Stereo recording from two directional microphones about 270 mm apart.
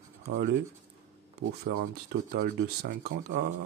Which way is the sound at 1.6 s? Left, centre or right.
Right.